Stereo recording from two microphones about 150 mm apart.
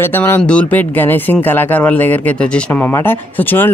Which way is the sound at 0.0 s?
15° left (ahead or behind).